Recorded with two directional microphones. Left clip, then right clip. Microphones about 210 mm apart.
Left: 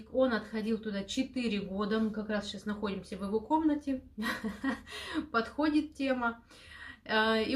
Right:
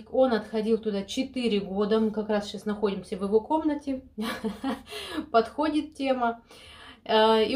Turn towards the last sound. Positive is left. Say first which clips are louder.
# right 8 dB
turn(degrees=0)  # may be behind; listen again after turning